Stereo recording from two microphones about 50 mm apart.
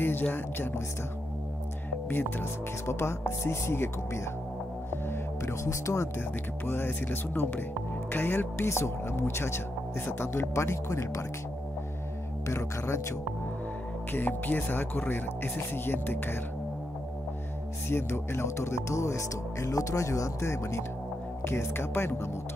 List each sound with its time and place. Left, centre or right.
0.0 s speech: left
2.0 s speech: left
2.9 s speech: left
6.1 s speech: left
8.6 s speech: left
12.4 s speech: left
14.1 s speech: left
17.8 s speech: left
21.5 s speech: left